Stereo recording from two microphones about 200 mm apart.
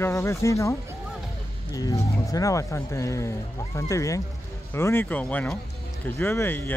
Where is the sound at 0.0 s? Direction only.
15° left (ahead or behind).